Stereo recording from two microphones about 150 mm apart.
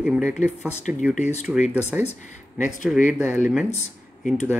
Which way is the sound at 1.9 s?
5° right (ahead or behind).